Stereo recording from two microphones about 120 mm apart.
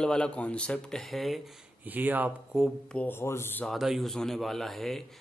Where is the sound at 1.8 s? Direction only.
15° right (ahead or behind).